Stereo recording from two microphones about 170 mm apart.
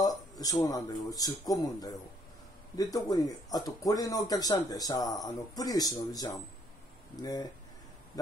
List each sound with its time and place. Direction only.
0.0 s speech: 20° left (ahead or behind)